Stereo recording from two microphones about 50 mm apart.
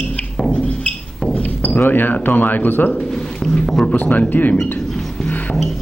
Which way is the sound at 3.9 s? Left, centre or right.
Left.